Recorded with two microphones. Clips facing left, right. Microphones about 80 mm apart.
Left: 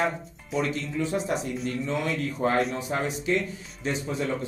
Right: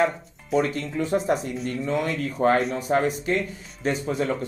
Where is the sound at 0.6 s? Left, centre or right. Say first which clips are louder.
Right 3 dB; right.